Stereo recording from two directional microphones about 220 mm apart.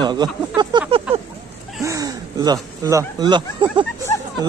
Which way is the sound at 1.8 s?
15° right (ahead or behind).